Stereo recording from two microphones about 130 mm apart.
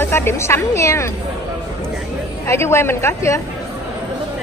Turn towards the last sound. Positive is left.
turn(degrees=20)  # may be behind; listen again after turning